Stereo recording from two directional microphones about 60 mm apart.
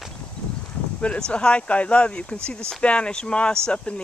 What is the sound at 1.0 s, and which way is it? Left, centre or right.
Speech, centre.